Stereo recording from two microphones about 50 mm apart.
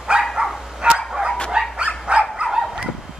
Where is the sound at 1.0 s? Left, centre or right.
Centre.